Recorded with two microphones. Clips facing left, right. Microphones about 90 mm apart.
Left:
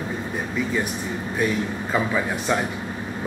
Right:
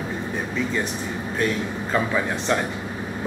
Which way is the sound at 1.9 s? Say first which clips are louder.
Even; 5° left (ahead or behind).